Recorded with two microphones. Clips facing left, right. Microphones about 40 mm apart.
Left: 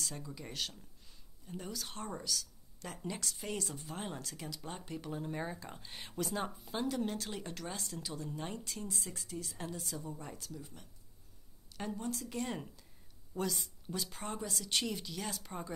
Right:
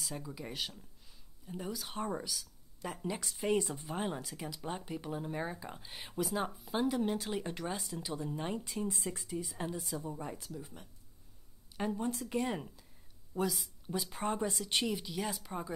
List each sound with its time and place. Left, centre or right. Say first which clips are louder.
0.0 s speech: right 2 dB; centre
8.8 s a woman's voice: right 5 dB; right
12.4 s a woman's voice: right 4 dB; centre
14.2 s a woman's voice: right 6 dB; right; by 15.7 s centre